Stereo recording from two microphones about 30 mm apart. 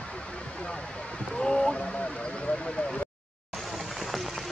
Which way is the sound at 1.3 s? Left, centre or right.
Left.